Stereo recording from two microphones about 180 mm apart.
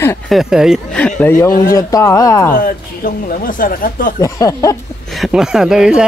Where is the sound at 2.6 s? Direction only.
55° left (ahead or behind).